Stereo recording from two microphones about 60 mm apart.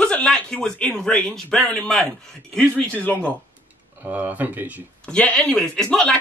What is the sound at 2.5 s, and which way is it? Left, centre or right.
Speech, left.